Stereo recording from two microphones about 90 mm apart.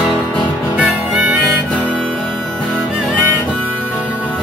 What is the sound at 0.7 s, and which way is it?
Music, 10° right (ahead or behind).